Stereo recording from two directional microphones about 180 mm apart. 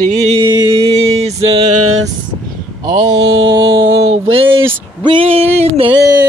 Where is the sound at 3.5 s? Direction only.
25° right (ahead or behind).